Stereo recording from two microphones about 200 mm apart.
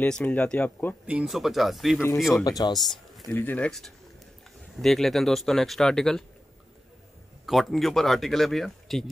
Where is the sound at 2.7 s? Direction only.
Centre (ahead or behind).